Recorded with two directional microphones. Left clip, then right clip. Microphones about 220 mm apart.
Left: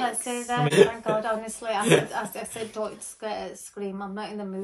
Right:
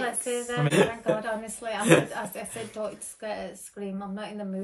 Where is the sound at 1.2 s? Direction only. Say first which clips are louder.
Left 3 dB; 20° left (ahead or behind).